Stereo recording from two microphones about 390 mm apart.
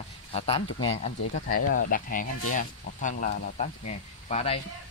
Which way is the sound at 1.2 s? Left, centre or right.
Left.